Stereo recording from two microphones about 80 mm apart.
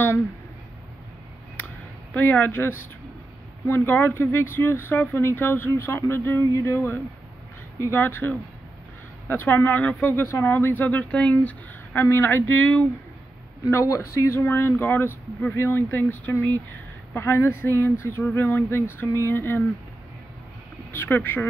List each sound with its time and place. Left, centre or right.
2.1 s speech: left
12.0 s speech: left
13.7 s speech: left
20.9 s speech: left